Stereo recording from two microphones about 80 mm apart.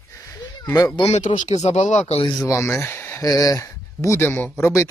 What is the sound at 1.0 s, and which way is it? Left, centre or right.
Speech, left.